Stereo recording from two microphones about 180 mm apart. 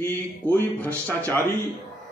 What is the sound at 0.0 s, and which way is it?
A man's voice, 10° left (ahead or behind).